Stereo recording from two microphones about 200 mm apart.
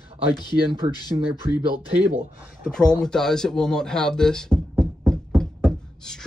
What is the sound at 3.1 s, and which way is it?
Speech, centre (ahead or behind).